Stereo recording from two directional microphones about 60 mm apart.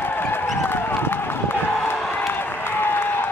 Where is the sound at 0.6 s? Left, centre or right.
Left.